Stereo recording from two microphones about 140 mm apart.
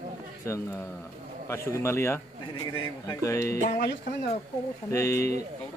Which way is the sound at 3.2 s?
20° left (ahead or behind).